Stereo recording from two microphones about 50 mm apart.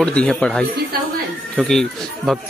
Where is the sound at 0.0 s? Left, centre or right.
Left.